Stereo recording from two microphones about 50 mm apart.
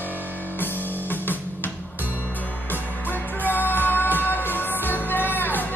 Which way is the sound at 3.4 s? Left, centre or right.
Left.